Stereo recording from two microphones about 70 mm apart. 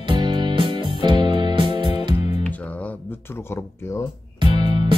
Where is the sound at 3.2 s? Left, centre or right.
Left.